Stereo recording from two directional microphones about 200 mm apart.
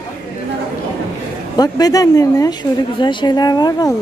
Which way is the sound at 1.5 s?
20° left (ahead or behind).